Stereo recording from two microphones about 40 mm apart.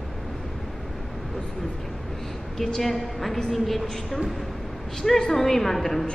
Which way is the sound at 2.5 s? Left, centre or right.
Centre.